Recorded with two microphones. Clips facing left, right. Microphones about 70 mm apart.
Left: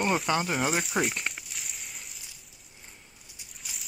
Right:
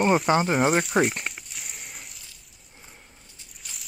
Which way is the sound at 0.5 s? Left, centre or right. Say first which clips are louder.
Right 7 dB; right.